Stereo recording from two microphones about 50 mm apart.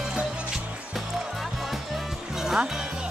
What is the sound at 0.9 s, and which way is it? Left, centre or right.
Music, centre.